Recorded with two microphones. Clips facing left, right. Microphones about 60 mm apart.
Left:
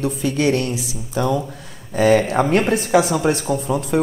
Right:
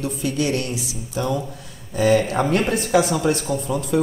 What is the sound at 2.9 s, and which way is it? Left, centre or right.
Speech, left.